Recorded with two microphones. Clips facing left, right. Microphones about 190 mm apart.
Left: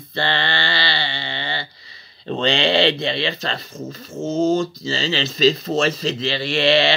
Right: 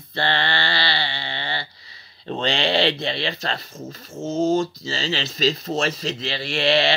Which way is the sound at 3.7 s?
Centre (ahead or behind).